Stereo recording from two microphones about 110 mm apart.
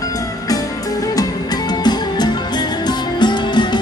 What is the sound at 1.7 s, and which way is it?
Music, 40° left (ahead or behind).